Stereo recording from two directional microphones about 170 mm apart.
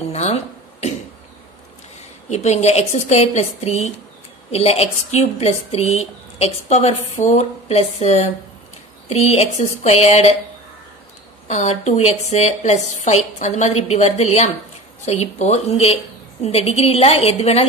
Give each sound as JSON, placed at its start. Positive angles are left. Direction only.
{"t": 0.1, "sound": "cough", "side_deg": 40}
{"t": 2.2, "sound": "a woman's voice", "side_deg": 40}
{"t": 11.4, "sound": "a woman's voice", "side_deg": 45}